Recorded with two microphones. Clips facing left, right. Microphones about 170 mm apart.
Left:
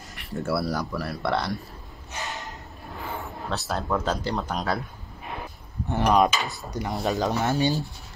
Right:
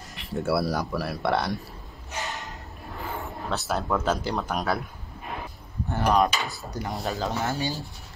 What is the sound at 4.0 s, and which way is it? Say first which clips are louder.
Dishes: right 1 dB; 5° right (ahead or behind).